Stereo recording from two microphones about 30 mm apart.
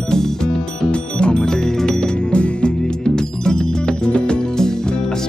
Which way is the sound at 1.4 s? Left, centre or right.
Centre.